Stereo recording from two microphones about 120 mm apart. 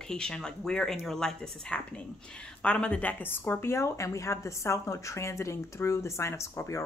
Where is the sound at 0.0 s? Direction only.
5° left (ahead or behind).